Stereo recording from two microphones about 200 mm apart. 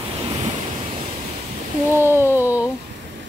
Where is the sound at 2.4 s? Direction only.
10° right (ahead or behind).